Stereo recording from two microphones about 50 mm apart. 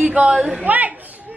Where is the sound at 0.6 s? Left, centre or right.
Right.